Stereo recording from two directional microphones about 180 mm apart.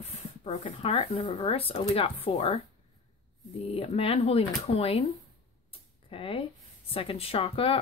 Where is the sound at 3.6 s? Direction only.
35° left (ahead or behind).